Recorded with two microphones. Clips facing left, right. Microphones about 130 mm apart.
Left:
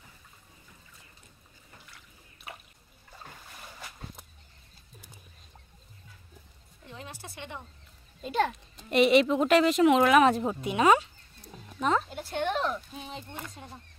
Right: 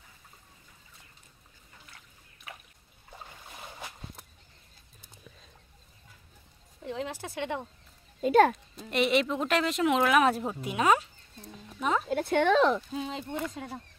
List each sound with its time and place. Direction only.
6.9 s speech: 90° right
8.2 s a child's voice: 55° right (ahead or behind)
8.9 s speech: centre (ahead or behind)
12.1 s speech: 65° right (ahead or behind); by 13.7 s 90° right